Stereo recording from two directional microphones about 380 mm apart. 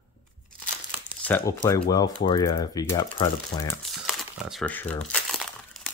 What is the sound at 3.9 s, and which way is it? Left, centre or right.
Crumpling, centre.